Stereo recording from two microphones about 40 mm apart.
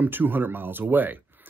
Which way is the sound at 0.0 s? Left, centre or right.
Right.